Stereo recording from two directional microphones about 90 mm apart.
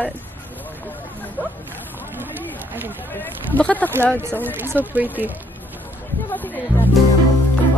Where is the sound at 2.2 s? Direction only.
20° right (ahead or behind).